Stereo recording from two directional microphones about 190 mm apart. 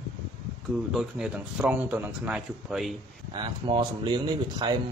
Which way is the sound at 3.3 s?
25° right (ahead or behind).